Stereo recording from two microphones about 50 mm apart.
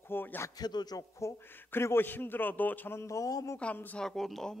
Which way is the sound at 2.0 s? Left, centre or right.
Left.